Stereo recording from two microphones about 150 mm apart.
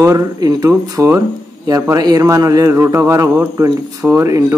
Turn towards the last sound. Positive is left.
turn(degrees=-20)  # may be behind; listen again after turning